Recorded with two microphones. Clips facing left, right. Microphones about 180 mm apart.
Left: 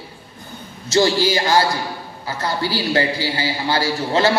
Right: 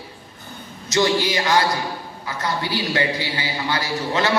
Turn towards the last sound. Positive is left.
turn(degrees=30)  # may be behind; listen again after turning